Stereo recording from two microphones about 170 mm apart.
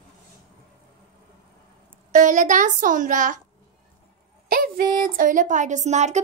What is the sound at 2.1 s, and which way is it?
A woman's voice, 50° right (ahead or behind).